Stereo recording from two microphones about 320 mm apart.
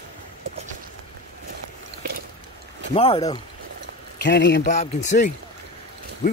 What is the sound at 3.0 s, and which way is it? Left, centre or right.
Speech, centre.